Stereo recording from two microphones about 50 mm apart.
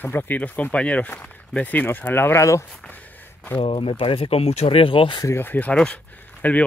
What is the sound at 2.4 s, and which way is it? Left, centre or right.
Speech, left.